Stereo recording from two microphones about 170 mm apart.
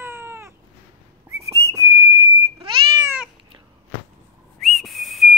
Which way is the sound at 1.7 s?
20° right (ahead or behind).